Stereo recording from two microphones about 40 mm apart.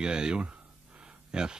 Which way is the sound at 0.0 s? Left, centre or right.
Right.